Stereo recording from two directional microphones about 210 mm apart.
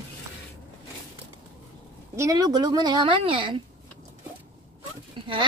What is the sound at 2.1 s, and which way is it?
A woman's voice, 15° right (ahead or behind).